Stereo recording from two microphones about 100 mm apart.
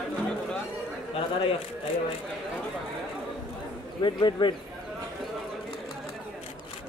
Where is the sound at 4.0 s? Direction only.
50° left (ahead or behind).